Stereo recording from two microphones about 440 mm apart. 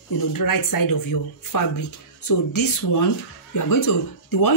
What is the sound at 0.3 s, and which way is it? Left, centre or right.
A woman's voice, left.